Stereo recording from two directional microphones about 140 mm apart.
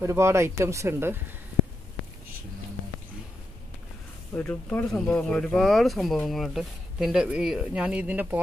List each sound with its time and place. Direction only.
0.0 s speech: 20° right (ahead or behind)
4.3 s speech: 15° left (ahead or behind); by 8.4 s 10° right (ahead or behind)